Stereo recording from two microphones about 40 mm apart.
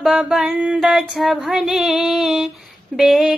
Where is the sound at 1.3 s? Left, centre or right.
Centre.